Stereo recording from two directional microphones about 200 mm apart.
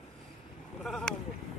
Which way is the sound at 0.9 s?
Centre (ahead or behind).